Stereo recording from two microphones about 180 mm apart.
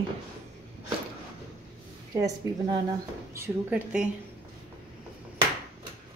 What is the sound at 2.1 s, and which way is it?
A woman's voice, 20° right (ahead or behind).